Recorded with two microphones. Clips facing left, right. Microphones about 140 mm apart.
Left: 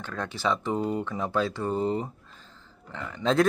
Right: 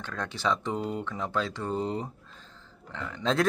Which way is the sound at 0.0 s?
5° left (ahead or behind).